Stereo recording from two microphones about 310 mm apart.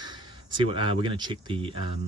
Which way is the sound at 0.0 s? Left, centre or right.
Centre.